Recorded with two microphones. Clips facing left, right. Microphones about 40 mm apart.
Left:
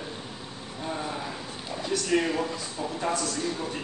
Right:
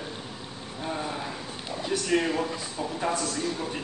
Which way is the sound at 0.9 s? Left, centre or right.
Centre.